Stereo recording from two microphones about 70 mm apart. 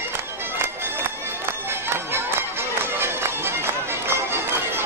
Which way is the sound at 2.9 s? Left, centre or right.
Right.